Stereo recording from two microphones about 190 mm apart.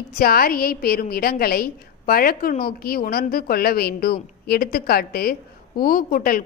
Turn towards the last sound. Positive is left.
turn(degrees=50)  # may be behind; listen again after turning